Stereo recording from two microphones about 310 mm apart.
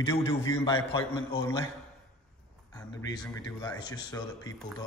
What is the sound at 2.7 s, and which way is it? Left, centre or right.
Speech, centre.